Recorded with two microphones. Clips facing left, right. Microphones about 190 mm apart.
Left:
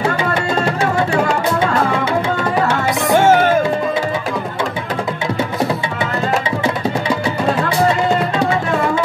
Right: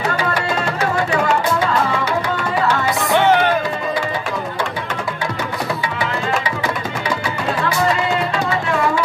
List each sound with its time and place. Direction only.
1.1 s music: 30° left (ahead or behind)
3.1 s music: 45° left (ahead or behind)